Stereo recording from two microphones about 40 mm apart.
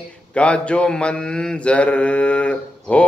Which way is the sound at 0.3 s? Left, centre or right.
Left.